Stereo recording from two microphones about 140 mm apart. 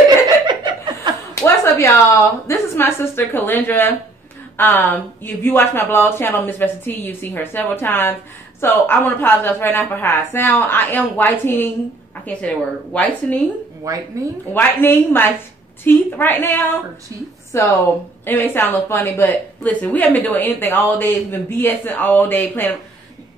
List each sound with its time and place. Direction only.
0.5 s laughter: 35° right (ahead or behind)
1.3 s a sound: 20° left (ahead or behind)
2.4 s speech: 20° left (ahead or behind)
14.2 s a woman's voice: 25° right (ahead or behind)
14.5 s speech: 15° left (ahead or behind)